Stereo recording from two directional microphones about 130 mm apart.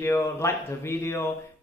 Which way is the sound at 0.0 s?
20° left (ahead or behind).